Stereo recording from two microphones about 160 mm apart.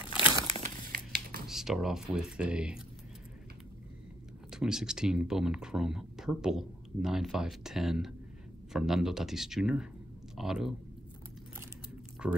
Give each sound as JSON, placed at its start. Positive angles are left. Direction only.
{"t": 0.0, "sound": "crumpling", "side_deg": -10}
{"t": 0.5, "sound": "crumpling", "side_deg": -45}
{"t": 0.9, "sound": "a sound", "side_deg": -70}
{"t": 1.5, "sound": "speech", "side_deg": 0}
{"t": 4.5, "sound": "speech", "side_deg": -5}
{"t": 12.2, "sound": "speech", "side_deg": -5}